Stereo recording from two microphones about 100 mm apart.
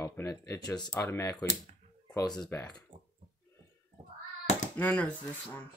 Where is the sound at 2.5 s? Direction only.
25° left (ahead or behind).